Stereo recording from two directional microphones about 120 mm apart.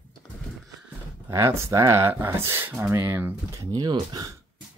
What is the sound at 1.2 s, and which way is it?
Speech, 20° right (ahead or behind).